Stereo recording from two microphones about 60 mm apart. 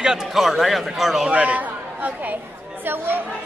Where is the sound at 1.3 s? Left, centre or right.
Right.